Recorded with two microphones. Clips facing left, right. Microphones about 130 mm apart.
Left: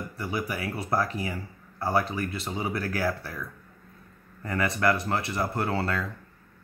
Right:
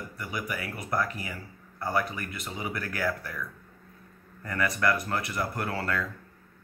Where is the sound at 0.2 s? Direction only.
30° left (ahead or behind).